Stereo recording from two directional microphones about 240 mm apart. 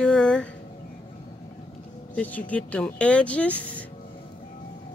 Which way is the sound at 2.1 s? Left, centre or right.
Centre.